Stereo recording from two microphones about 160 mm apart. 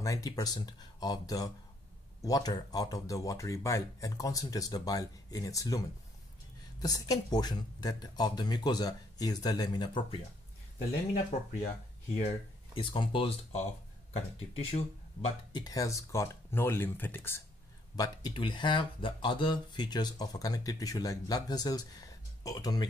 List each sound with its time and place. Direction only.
0.0 s speech: 20° left (ahead or behind)
12.7 s speech: 30° left (ahead or behind)
15.5 s speech: 25° left (ahead or behind)
17.9 s speech: 25° left (ahead or behind)